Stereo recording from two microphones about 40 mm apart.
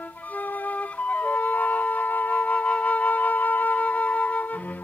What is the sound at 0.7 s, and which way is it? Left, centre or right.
Flute, left.